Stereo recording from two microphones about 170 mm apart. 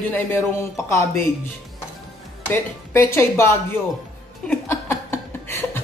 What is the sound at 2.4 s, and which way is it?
Speech, 15° left (ahead or behind).